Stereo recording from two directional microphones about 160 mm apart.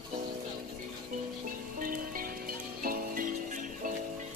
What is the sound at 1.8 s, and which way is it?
Music, 60° right (ahead or behind).